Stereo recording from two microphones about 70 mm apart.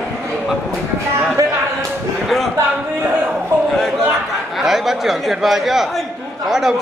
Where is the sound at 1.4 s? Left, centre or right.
Right.